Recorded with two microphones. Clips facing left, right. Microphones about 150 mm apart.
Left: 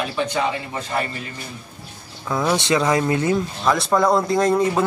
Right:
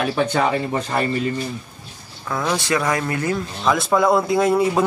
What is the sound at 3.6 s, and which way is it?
Speech, centre (ahead or behind).